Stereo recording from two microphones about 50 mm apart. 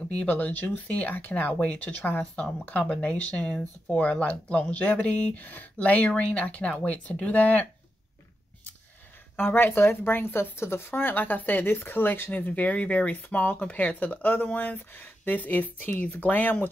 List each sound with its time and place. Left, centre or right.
0.1 s speech: left
2.8 s speech: left
3.9 s speech: left
9.4 s speech: left